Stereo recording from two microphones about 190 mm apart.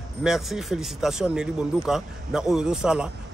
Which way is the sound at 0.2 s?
Centre (ahead or behind).